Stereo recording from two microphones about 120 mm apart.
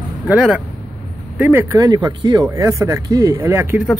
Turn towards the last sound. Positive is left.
turn(degrees=-20)  # may be behind; listen again after turning